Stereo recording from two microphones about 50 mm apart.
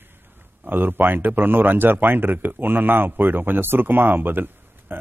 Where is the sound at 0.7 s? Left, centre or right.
Right.